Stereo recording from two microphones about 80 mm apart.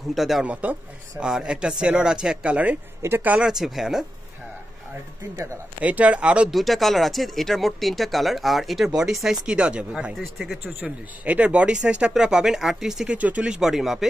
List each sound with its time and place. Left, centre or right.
0.1 s speech: centre
0.5 s speech: centre
1.2 s speech: centre
5.3 s speech: right
5.8 s speech: centre
6.5 s speech: centre
10.1 s speech: centre
10.6 s speech: right; by 14.0 s centre